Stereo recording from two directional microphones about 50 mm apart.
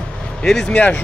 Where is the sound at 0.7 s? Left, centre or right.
Left.